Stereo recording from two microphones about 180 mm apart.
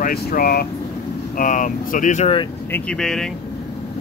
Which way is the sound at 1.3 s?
45° left (ahead or behind).